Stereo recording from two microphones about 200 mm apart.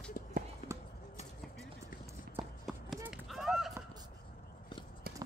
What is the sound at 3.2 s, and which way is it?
Run, centre (ahead or behind).